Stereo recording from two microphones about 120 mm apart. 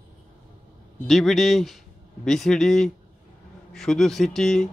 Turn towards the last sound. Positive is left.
turn(degrees=5)  # may be behind; listen again after turning